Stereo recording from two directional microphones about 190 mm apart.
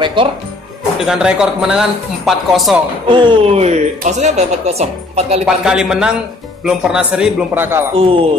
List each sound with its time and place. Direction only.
0.0 s speech: 25° right (ahead or behind)
0.9 s speech: centre (ahead or behind)
3.1 s speech: 25° right (ahead or behind)
5.4 s speech: 5° right (ahead or behind)